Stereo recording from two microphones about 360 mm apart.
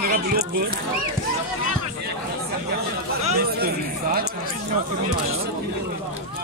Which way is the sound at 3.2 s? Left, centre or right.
Right.